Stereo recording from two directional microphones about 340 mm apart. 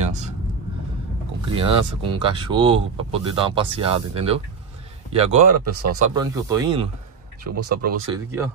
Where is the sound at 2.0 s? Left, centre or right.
Centre.